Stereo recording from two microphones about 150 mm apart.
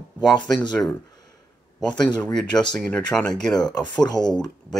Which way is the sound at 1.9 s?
30° left (ahead or behind).